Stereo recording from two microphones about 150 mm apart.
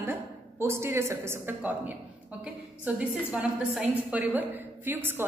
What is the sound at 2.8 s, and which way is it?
A woman's voice, 10° right (ahead or behind).